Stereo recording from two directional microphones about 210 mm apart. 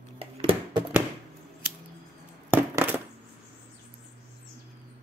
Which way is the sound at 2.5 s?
10° right (ahead or behind).